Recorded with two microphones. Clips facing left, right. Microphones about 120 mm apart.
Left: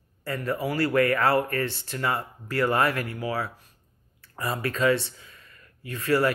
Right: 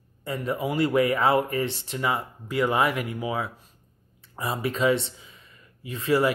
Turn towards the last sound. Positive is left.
turn(degrees=-25)  # may be behind; listen again after turning